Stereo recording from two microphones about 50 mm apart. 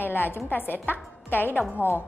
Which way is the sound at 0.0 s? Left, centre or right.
Left.